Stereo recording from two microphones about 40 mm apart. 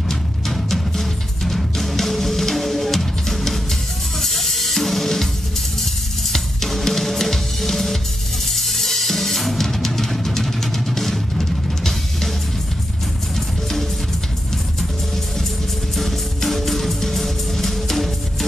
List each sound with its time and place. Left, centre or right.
0.1 s music: centre
4.2 s drum kit: centre
16.0 s music: centre